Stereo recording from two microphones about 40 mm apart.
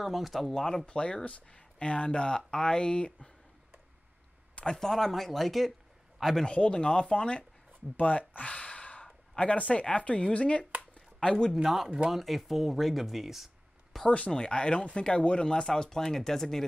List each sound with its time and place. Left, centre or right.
0.0 s speech: centre
0.6 s speech: centre
0.8 s speech: left
4.7 s a man's voice: centre
6.4 s speech: left
7.9 s speech: left
8.4 s a sound: left
9.4 s speech: left
11.1 s a man's voice: centre
11.5 s speech: centre
14.0 s speech: left; by 16.6 s centre